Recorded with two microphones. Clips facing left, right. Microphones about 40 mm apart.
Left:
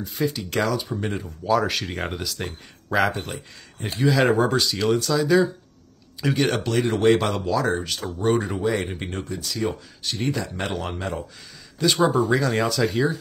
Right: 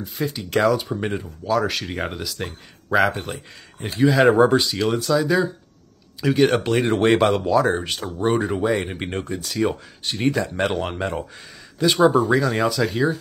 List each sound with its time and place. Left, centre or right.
0.0 s speech: centre
4.1 s speech: centre
6.6 s speech: right
8.3 s speech: centre
9.1 s speech: right
11.8 s speech: centre